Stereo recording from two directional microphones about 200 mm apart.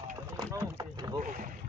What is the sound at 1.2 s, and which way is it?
Speech, 40° right (ahead or behind).